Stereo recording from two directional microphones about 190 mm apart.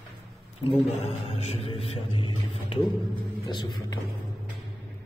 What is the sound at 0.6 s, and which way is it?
Speech, 25° left (ahead or behind).